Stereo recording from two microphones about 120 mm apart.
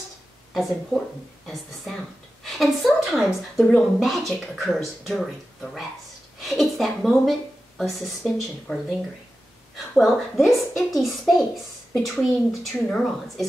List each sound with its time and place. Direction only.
0.6 s a woman's voice: centre (ahead or behind)
9.9 s a woman's voice: centre (ahead or behind)